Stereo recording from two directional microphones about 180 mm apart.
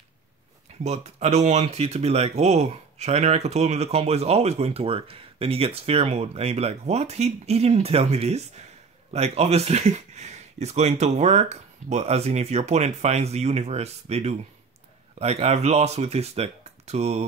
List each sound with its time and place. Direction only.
0.8 s speech: 40° right (ahead or behind)